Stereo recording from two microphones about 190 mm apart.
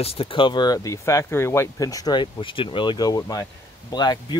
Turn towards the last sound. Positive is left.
turn(degrees=20)  # may be behind; listen again after turning